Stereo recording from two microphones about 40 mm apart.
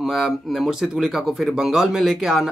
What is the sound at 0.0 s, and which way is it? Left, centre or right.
Speech, centre.